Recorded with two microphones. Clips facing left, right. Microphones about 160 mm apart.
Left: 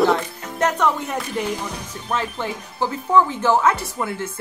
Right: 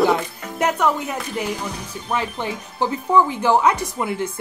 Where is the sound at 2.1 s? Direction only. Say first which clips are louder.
Right 1 dB; 15° right (ahead or behind).